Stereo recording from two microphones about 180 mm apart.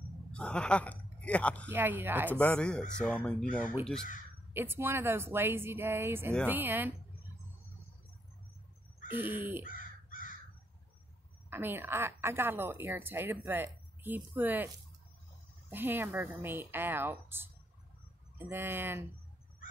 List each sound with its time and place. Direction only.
0.3 s speech: 5° left (ahead or behind)
1.7 s a woman's voice: 10° right (ahead or behind)
2.3 s speech: 5° left (ahead or behind)
4.6 s a woman's voice: 15° right (ahead or behind)
9.1 s a woman's voice: 10° right (ahead or behind)
9.7 s crow: 50° left (ahead or behind)
11.5 s a woman's voice: 10° right (ahead or behind)
15.7 s a woman's voice: 10° right (ahead or behind)
18.5 s a woman's voice: 10° right (ahead or behind)